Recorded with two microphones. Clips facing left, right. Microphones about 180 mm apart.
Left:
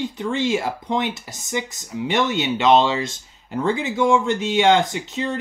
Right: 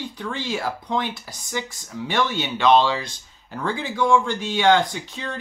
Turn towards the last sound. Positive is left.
turn(degrees=20)  # may be behind; listen again after turning